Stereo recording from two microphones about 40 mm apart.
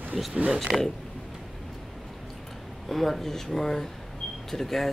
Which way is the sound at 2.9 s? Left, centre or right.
Centre.